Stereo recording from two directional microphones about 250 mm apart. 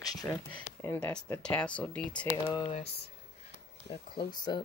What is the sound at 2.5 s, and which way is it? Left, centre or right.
Speech, left.